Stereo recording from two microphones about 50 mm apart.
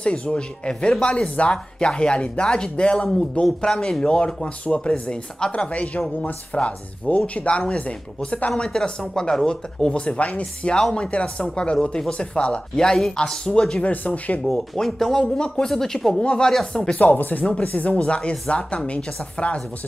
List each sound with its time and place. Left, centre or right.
0.0 s speech: left
8.6 s speech: centre
9.5 s speech: centre
14.0 s speech: left
14.4 s speech: centre
15.3 s speech: centre
15.7 s speech: centre
16.2 s speech: centre
16.4 s speech: centre
16.8 s speech: left